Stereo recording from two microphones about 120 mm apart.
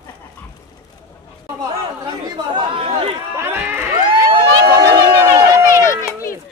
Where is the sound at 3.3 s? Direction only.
20° right (ahead or behind).